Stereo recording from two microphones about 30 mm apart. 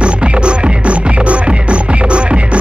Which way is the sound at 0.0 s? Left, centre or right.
Right.